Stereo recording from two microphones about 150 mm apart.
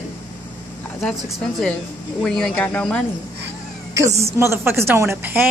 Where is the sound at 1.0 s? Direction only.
5° left (ahead or behind).